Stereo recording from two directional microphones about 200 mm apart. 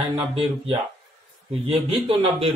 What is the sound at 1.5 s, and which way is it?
A man's voice, 30° right (ahead or behind).